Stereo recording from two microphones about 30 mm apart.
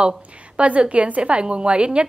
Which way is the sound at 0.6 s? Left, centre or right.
Right.